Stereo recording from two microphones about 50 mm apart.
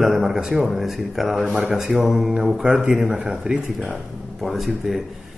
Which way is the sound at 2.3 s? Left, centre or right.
Centre.